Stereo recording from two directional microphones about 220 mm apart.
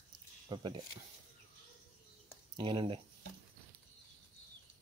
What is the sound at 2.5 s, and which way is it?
Speech, 20° right (ahead or behind).